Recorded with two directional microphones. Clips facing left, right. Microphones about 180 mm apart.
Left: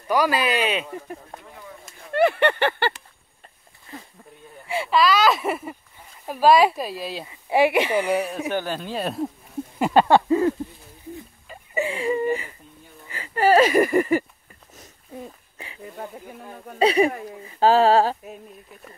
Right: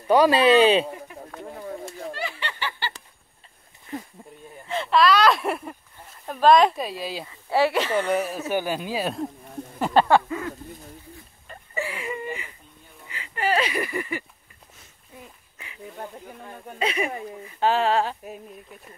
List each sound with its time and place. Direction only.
0.1 s speech: 25° right (ahead or behind)
1.4 s speech: 45° right (ahead or behind)
2.1 s a sound: 60° left (ahead or behind)
4.6 s speech: 5° left (ahead or behind)
7.2 s speech: 15° left (ahead or behind)
8.5 s speech: 10° right (ahead or behind)
9.8 s speech: 10° left (ahead or behind)
11.7 s whimper: 25° left (ahead or behind)
13.1 s speech: 40° left (ahead or behind)
15.5 s a sound: 30° left (ahead or behind)
15.8 s speech: centre (ahead or behind)
16.7 s speech: 35° left (ahead or behind)
18.2 s speech: centre (ahead or behind)